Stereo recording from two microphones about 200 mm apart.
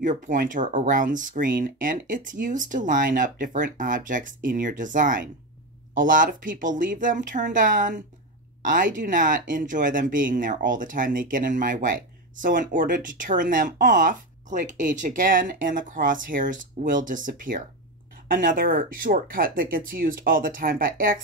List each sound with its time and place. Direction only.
0.0 s speech: 40° right (ahead or behind)